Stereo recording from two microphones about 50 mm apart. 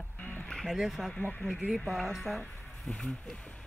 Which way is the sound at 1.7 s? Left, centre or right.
Centre.